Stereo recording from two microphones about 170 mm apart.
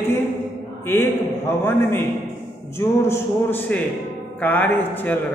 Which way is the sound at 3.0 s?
15° left (ahead or behind).